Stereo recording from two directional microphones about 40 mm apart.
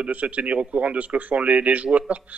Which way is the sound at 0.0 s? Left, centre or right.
Right.